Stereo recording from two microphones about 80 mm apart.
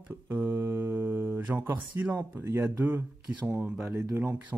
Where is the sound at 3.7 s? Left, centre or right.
Centre.